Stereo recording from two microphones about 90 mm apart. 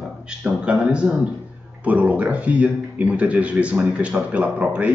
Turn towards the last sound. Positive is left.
turn(degrees=-15)  # may be behind; listen again after turning